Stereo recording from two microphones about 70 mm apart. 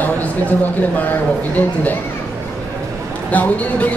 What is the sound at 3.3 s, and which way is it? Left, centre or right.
Speech, left.